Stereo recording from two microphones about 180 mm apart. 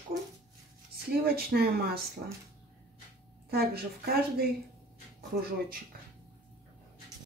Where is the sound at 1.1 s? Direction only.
60° right (ahead or behind).